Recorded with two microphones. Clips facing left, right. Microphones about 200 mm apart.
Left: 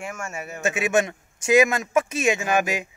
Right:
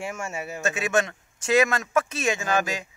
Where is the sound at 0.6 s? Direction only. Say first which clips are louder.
Left 3 dB; 20° left (ahead or behind).